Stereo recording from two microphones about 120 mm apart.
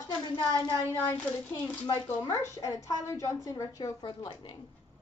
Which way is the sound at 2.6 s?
25° left (ahead or behind).